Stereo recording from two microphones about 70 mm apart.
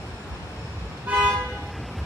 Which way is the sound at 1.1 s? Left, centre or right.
Right.